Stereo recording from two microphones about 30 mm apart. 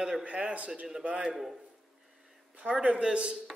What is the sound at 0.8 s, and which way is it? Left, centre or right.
Speech, right.